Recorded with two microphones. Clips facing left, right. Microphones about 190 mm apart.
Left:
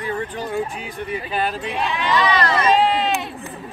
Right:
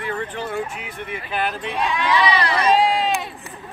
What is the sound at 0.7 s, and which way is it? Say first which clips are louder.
Speech: left 4 dB; 35° left (ahead or behind).